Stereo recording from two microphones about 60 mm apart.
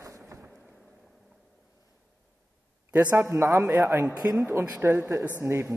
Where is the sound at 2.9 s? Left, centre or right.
Right.